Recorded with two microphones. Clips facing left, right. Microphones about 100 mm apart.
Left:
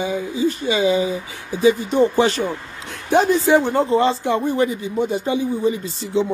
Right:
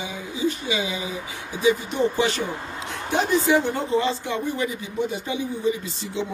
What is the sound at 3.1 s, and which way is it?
Speech, 35° left (ahead or behind).